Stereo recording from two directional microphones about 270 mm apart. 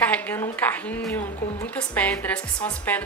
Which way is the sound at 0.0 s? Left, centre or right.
Centre.